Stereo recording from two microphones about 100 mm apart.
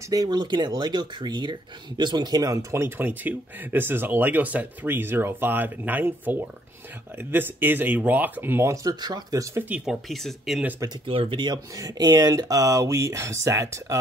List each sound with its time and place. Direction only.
0.1 s speech: 45° right (ahead or behind); by 8.7 s 25° right (ahead or behind)
8.8 s speech: 40° right (ahead or behind)
9.6 s speech: 15° right (ahead or behind)
10.0 s speech: centre (ahead or behind)
11.1 s speech: 60° right (ahead or behind); by 13.9 s 30° right (ahead or behind)